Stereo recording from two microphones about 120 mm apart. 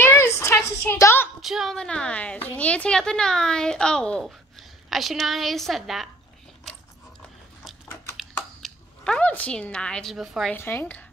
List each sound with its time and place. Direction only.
0.0 s a sound: 20° left (ahead or behind)
1.4 s a woman's voice: centre (ahead or behind)
6.7 s biting: centre (ahead or behind)
7.9 s a sound: 25° left (ahead or behind)
8.6 s speech: 5° left (ahead or behind)
10.1 s a woman's voice: 5° right (ahead or behind)
10.5 s a woman's voice: 20° left (ahead or behind)